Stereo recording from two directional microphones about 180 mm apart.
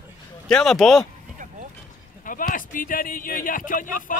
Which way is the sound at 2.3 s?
50° left (ahead or behind).